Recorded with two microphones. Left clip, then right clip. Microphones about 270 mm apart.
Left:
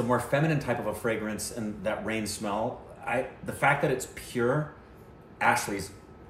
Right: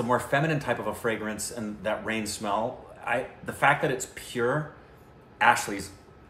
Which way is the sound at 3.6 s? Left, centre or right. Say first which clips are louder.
Right 2 dB; centre.